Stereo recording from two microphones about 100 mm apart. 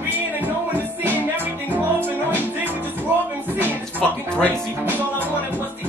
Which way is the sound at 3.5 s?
20° right (ahead or behind).